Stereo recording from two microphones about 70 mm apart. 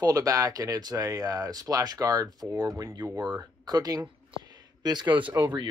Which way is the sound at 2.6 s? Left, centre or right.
Right.